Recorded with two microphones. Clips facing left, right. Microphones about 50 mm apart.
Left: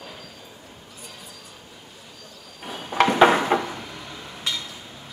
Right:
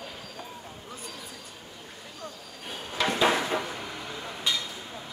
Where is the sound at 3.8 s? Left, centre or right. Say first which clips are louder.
Right 1 dB; centre.